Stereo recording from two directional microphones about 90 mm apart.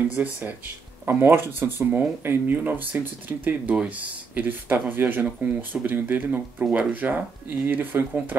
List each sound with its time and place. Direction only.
0.1 s speech: 15° right (ahead or behind)